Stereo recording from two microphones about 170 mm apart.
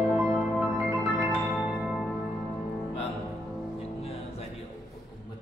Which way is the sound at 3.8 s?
35° left (ahead or behind).